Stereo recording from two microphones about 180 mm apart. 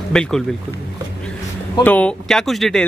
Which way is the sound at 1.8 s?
10° left (ahead or behind).